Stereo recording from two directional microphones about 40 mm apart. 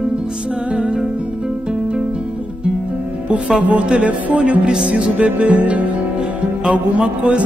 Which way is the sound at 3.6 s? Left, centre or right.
Right.